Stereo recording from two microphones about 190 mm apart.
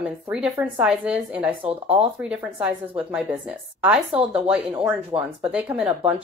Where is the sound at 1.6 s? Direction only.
30° right (ahead or behind).